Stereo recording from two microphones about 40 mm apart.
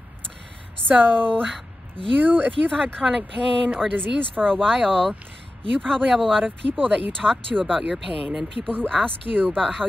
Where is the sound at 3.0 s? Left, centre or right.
Centre.